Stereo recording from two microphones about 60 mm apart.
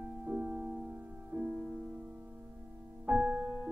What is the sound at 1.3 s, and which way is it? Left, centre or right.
Music, right.